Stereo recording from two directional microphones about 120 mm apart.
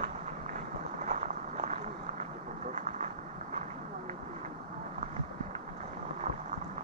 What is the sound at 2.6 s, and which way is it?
Vehicle, 90° right.